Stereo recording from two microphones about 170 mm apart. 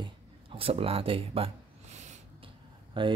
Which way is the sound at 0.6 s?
35° right (ahead or behind).